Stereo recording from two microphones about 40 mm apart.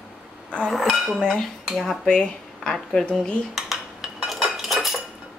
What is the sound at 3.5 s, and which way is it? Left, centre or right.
Cutlery, centre.